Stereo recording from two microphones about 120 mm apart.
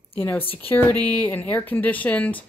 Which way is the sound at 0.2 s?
15° left (ahead or behind).